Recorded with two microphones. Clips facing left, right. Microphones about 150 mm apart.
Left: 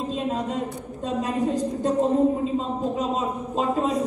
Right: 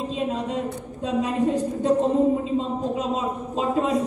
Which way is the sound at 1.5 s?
40° left (ahead or behind).